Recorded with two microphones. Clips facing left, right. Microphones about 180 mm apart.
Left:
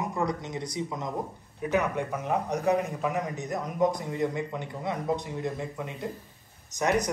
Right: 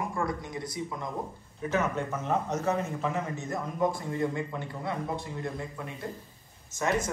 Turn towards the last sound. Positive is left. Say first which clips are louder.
# left 3 dB
turn(degrees=20)  # may be behind; listen again after turning